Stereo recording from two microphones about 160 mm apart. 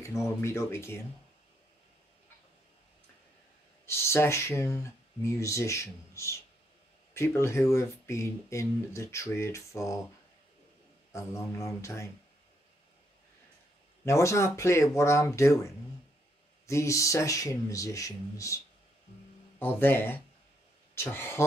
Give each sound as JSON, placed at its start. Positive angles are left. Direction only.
{"t": 0.4, "sound": "speech", "side_deg": 15}
{"t": 3.8, "sound": "speech", "side_deg": 15}
{"t": 11.1, "sound": "speech", "side_deg": 20}
{"t": 14.0, "sound": "speech", "side_deg": 20}
{"t": 19.6, "sound": "speech", "side_deg": 15}